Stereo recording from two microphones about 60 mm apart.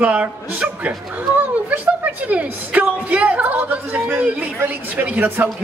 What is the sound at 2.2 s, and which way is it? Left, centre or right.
A man's voice, right.